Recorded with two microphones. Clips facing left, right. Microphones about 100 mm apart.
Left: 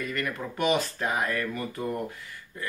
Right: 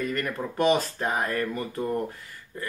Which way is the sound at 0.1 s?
35° right (ahead or behind).